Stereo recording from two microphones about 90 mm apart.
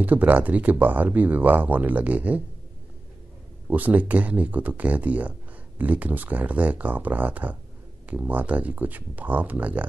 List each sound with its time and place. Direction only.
0.0 s speech: 20° right (ahead or behind)
3.6 s speech: 20° right (ahead or behind)